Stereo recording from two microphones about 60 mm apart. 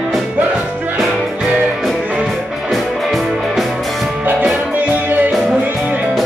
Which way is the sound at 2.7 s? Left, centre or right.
Centre.